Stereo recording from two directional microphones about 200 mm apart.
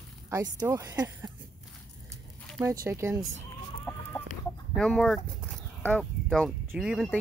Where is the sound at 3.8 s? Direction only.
10° left (ahead or behind).